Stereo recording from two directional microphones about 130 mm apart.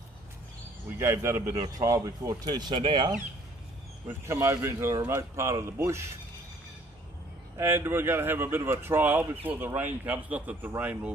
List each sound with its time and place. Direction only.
0.9 s speech: 20° right (ahead or behind)
4.3 s speech: 20° right (ahead or behind)
7.5 s speech: 15° right (ahead or behind)